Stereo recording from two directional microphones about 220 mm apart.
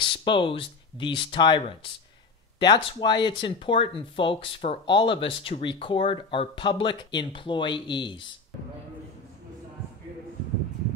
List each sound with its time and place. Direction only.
0.0 s speech: 20° left (ahead or behind)